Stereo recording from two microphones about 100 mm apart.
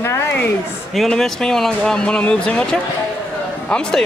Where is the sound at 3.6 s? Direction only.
10° left (ahead or behind).